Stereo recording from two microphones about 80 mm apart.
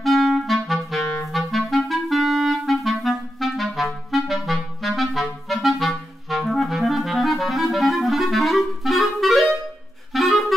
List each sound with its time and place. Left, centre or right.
0.0 s clarinet: centre